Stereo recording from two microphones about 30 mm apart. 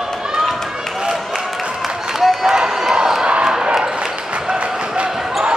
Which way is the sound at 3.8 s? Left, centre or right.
Right.